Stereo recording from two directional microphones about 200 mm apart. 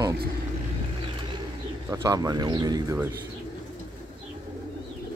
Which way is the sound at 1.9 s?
15° right (ahead or behind).